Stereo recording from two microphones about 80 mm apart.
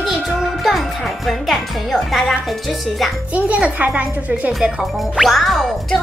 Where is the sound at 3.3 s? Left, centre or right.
Centre.